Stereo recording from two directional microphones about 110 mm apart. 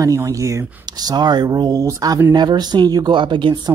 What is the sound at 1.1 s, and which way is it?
Speech, 40° right (ahead or behind).